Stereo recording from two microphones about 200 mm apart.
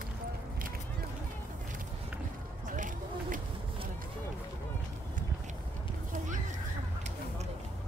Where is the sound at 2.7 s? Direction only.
40° right (ahead or behind).